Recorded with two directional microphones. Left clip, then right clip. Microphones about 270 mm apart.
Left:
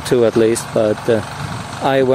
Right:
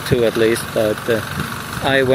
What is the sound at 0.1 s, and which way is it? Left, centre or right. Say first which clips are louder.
Speech: left 2 dB; left.